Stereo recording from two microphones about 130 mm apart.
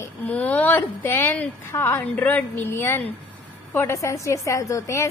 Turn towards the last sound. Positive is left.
turn(degrees=25)  # may be behind; listen again after turning